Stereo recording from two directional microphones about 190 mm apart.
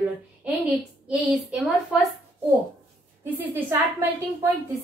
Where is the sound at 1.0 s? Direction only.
5° right (ahead or behind).